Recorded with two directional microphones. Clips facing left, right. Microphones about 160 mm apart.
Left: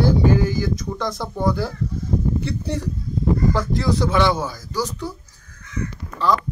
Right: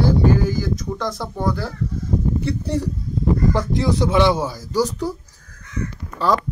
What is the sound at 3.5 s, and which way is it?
Speech, 20° right (ahead or behind).